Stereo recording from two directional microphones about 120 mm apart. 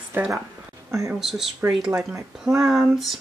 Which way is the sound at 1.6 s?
20° right (ahead or behind).